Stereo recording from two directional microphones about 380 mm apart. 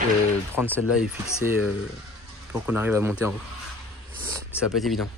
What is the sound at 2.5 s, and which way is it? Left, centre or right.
Speech, centre.